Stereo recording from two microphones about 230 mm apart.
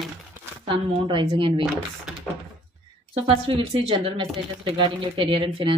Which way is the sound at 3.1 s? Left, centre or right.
Right.